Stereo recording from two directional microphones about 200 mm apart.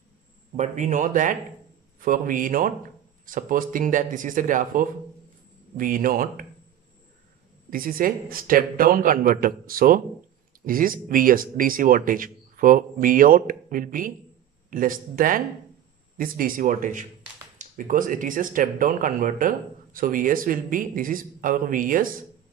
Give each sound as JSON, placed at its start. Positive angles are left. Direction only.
{"t": 0.6, "sound": "speech", "side_deg": -40}
{"t": 7.7, "sound": "speech", "side_deg": -45}